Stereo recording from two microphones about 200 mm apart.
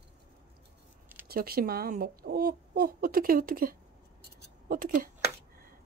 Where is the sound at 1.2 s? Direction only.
50° right (ahead or behind).